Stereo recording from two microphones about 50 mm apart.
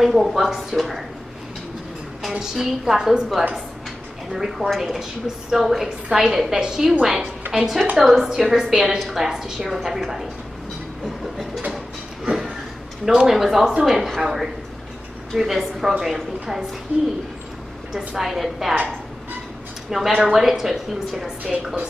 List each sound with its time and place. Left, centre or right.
0.0 s a woman's voice: centre
2.2 s a woman's voice: centre
13.0 s a woman's voice: centre
16.9 s speech: right
17.9 s a woman's voice: centre
20.1 s a woman's voice: right
20.3 s a woman's voice: centre